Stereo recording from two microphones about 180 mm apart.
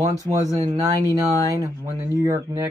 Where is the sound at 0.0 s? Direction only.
20° right (ahead or behind).